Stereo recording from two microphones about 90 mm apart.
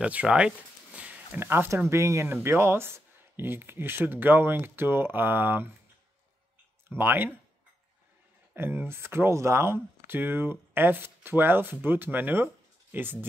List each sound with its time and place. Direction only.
0.0 s speech: 15° right (ahead or behind)
0.9 s a sound: 15° right (ahead or behind)
1.4 s speech: 25° right (ahead or behind)
6.9 s speech: 25° right (ahead or behind)
8.5 s speech: 25° right (ahead or behind)